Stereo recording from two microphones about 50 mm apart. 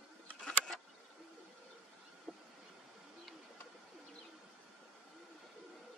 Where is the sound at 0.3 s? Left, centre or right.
Left.